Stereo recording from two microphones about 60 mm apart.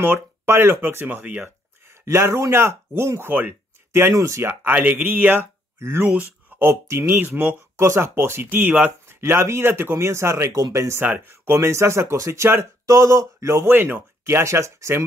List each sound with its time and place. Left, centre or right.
0.5 s speech: right
1.4 s speech: right
4.1 s speech: right
4.5 s speech: right
5.8 s speech: right
7.2 s speech: right
7.8 s speech: right
9.2 s speech: right
11.0 s speech: right
11.5 s speech: right
12.8 s speech: right
13.7 s speech: right